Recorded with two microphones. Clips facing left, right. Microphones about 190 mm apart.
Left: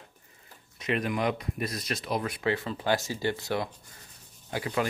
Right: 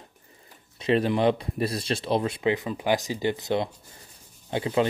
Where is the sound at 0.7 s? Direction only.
30° right (ahead or behind).